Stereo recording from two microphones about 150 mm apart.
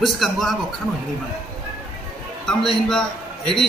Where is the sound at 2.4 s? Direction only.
5° left (ahead or behind).